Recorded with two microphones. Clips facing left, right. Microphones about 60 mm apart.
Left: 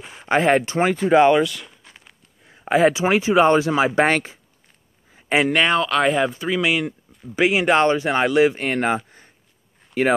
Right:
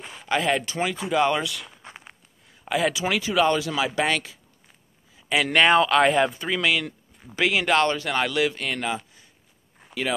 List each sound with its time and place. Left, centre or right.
0.2 s speech: left
1.4 s speech: centre
1.8 s a sound: right
2.4 s speech: left
5.1 s a sound: left
5.5 s speech: centre
6.6 s speech: left